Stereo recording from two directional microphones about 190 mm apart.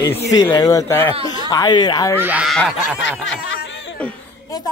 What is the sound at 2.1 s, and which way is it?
Speech, 10° right (ahead or behind).